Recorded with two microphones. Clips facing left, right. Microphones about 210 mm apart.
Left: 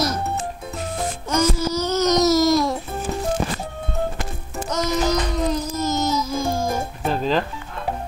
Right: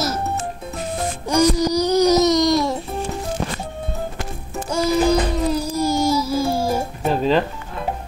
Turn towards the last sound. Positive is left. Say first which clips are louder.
# right 3 dB
turn(degrees=0)  # may be behind; listen again after turning